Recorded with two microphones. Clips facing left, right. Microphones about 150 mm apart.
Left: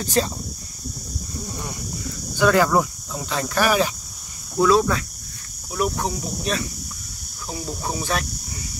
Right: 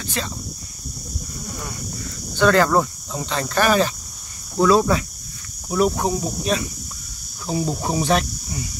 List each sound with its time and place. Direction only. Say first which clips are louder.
0.0 s speech: left 7 dB; 40° left (ahead or behind)
2.3 s speech: right 1 dB; 10° left (ahead or behind)
4.6 s speech: right 1 dB; 5° right (ahead or behind)
5.9 s speech: right 4 dB; 20° right (ahead or behind)